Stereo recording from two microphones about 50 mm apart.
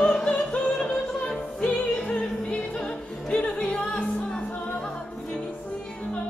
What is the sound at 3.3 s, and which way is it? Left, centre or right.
Music, left.